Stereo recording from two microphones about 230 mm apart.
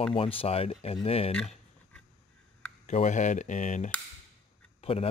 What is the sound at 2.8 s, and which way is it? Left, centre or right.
A man's voice, left.